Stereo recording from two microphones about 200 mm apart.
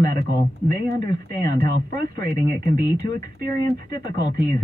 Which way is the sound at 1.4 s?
45° right (ahead or behind).